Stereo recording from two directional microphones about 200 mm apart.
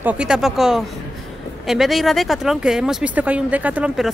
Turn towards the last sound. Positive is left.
turn(degrees=-5)  # may be behind; listen again after turning